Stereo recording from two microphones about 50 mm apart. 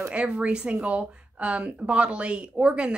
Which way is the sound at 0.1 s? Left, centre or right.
Right.